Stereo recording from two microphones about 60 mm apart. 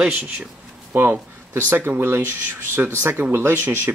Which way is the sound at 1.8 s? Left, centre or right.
Right.